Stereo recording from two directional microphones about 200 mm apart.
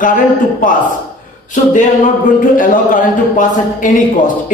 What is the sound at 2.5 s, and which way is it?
A man's voice, 40° left (ahead or behind).